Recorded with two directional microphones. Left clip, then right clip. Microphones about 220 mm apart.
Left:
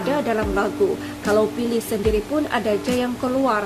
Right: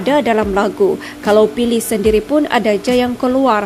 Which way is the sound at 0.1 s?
35° right (ahead or behind).